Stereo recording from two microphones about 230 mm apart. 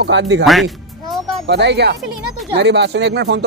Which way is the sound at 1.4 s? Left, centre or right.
Right.